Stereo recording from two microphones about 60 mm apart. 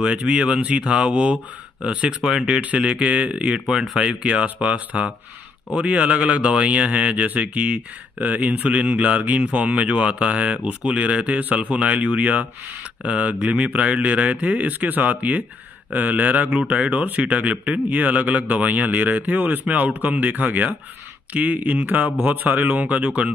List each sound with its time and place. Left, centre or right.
0.0 s a man's voice: centre
2.6 s a man's voice: right